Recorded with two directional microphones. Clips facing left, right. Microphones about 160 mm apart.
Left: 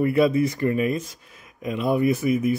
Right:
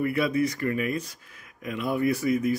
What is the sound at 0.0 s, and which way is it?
Speech, 25° left (ahead or behind).